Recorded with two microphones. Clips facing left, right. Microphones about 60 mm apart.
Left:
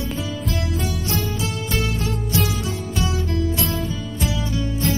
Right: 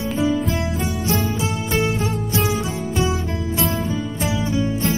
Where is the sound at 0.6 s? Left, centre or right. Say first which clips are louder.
Right 2 dB; right.